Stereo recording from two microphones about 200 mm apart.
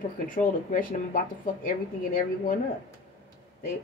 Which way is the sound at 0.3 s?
45° left (ahead or behind).